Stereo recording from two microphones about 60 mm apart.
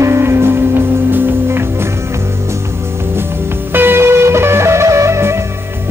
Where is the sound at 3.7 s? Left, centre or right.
Right.